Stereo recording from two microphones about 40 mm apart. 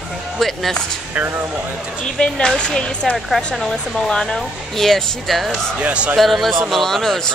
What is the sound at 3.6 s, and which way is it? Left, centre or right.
A woman's voice, centre.